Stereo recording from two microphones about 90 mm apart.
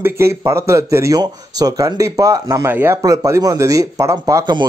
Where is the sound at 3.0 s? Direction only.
40° right (ahead or behind).